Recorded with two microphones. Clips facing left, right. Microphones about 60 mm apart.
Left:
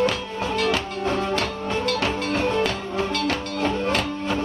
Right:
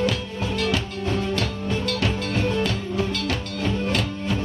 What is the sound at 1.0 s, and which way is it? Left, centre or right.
Music, left.